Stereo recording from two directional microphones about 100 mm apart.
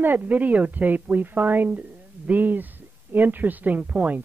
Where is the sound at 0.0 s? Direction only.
20° right (ahead or behind).